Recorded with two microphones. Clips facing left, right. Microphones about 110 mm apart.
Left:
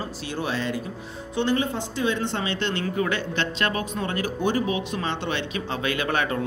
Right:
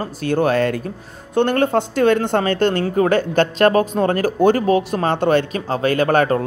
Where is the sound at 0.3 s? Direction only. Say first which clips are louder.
Right 11 dB; 50° right (ahead or behind).